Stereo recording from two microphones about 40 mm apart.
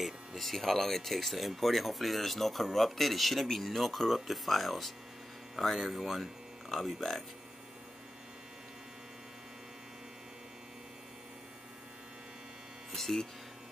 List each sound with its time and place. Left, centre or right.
0.0 s speech: centre
7.0 s speech: centre
12.9 s speech: centre